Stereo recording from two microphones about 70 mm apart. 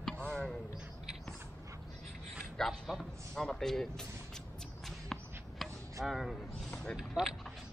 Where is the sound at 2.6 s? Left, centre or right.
Centre.